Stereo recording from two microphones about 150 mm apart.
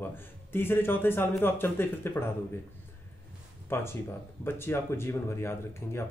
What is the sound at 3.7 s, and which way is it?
Speech, 15° left (ahead or behind).